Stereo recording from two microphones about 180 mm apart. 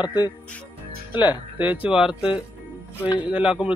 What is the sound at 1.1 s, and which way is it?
Speech, 10° right (ahead or behind).